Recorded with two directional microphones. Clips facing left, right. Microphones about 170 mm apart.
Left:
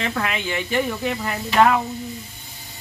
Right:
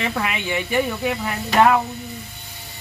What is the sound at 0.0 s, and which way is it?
Speech, 10° right (ahead or behind).